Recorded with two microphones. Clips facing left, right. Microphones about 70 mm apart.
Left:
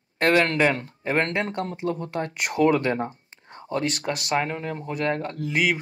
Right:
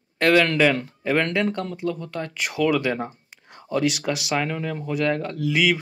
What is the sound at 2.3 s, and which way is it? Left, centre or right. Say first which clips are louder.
Speech: left 1 dB; left.